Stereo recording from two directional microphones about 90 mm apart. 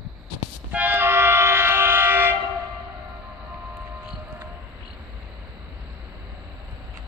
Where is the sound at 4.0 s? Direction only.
15° right (ahead or behind).